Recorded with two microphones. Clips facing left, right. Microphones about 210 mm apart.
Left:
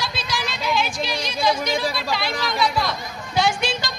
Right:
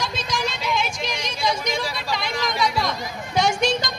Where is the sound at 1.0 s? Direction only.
35° left (ahead or behind).